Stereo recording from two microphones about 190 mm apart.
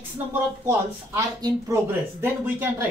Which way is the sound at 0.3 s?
15° right (ahead or behind).